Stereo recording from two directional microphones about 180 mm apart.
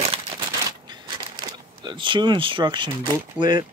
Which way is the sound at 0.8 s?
25° right (ahead or behind).